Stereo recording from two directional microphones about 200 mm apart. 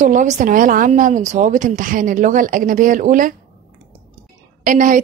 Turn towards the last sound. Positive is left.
turn(degrees=-40)  # may be behind; listen again after turning